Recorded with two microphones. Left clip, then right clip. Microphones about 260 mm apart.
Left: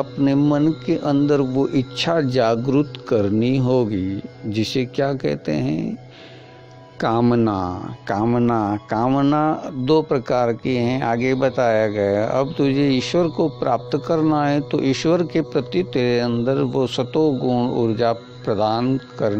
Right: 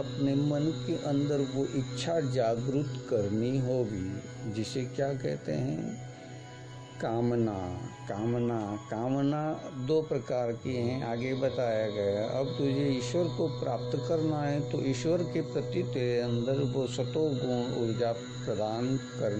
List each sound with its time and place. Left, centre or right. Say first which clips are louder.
0.2 s speech: left 12 dB; left
7.0 s speech: left 12 dB; left